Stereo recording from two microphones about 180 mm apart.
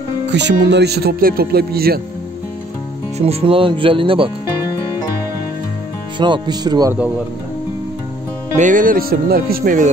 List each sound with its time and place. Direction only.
0.3 s speech: 75° right (ahead or behind); by 2.0 s 60° right (ahead or behind)
3.2 s speech: 35° right (ahead or behind)
6.1 s speech: 25° right (ahead or behind)
8.5 s speech: 45° right (ahead or behind)